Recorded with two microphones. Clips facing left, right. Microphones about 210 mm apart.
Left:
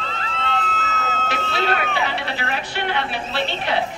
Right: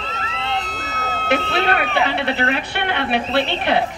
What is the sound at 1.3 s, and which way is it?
Speech, 60° right (ahead or behind).